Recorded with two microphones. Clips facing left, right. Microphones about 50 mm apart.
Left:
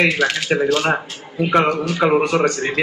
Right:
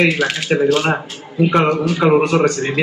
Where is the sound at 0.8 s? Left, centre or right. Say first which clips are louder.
Right 1 dB; centre.